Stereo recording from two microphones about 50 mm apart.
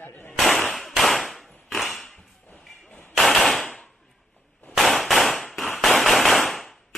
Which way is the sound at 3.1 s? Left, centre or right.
Centre.